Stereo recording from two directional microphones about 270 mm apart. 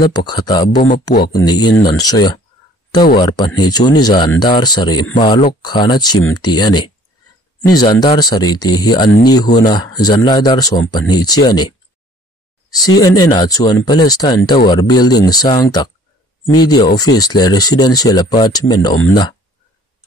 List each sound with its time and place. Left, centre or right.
0.0 s speech: centre